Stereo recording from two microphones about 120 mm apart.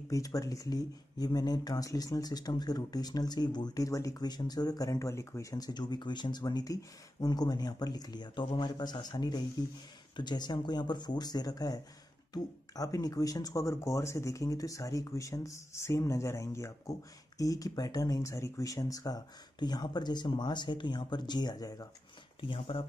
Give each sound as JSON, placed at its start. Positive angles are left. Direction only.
{"t": 0.1, "sound": "speech", "side_deg": 30}
{"t": 22.4, "sound": "speech", "side_deg": 50}